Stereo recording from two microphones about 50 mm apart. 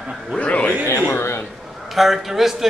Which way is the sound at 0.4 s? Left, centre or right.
Left.